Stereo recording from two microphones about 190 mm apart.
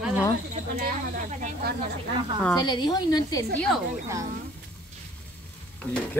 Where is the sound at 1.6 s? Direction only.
55° right (ahead or behind).